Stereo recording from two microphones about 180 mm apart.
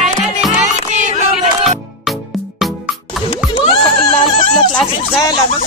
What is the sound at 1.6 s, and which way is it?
Music, centre (ahead or behind).